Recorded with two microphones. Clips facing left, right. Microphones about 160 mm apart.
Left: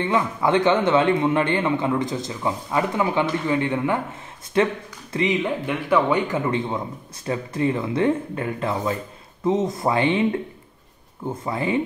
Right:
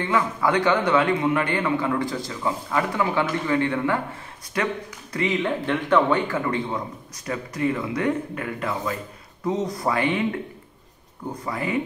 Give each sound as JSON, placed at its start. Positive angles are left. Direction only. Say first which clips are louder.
{"t": 0.0, "sound": "a man's voice", "louder": "left 1 dB", "side_deg": 25}
{"t": 11.4, "sound": "a man's voice", "louder": "left 3 dB", "side_deg": 25}